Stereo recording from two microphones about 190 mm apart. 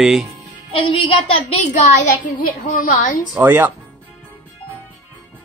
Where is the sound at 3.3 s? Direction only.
10° right (ahead or behind).